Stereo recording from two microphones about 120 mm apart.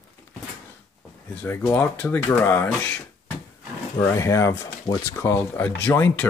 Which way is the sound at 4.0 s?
25° left (ahead or behind).